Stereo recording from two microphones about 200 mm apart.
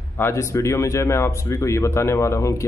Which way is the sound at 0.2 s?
15° left (ahead or behind).